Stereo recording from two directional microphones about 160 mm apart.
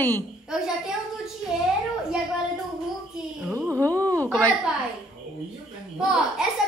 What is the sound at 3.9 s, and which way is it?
Wail, 20° right (ahead or behind).